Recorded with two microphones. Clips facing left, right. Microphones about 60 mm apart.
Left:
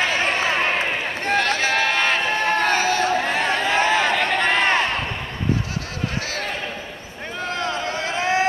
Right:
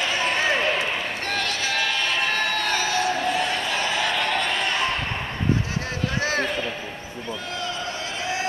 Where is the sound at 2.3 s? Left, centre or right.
Left.